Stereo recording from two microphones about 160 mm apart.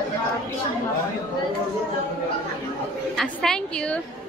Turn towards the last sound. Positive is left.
turn(degrees=5)  # may be behind; listen again after turning